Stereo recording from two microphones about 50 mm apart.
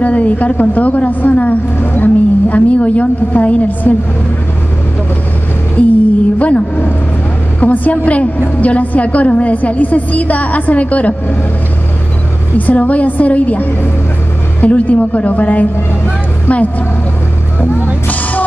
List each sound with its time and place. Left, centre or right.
0.0 s a woman's voice: left
5.8 s a woman's voice: left
12.5 s a woman's voice: left